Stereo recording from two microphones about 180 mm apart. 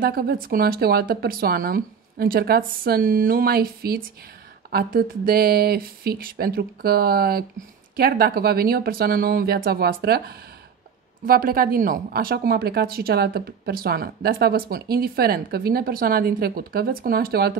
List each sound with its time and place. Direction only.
0.0 s a woman's voice: 55° right (ahead or behind)